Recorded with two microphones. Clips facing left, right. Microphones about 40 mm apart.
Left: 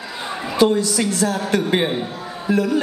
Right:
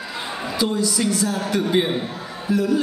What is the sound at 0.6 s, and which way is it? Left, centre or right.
A woman's voice, left.